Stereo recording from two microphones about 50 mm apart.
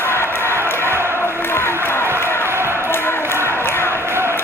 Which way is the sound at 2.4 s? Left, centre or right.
Right.